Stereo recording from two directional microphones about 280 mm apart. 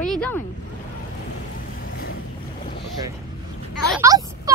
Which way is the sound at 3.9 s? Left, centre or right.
Centre.